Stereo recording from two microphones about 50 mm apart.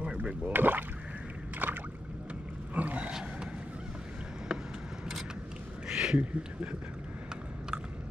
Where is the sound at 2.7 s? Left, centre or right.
Right.